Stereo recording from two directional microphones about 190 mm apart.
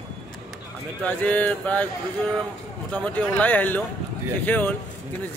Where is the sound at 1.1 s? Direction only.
10° left (ahead or behind).